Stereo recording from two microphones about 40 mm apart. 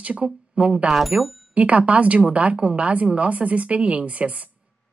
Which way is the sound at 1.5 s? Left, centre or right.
Right.